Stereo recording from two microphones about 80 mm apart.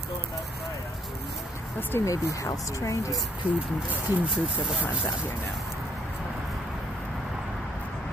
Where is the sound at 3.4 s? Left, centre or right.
Centre.